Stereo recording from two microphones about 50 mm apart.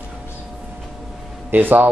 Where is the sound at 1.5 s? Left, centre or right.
Right.